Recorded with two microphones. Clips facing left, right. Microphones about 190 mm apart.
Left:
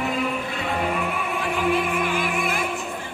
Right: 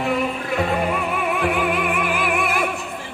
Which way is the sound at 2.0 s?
65° right (ahead or behind).